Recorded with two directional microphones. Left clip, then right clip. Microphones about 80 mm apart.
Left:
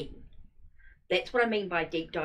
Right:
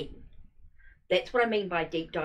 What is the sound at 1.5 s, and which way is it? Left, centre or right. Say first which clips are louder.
Speech: right 1 dB; left.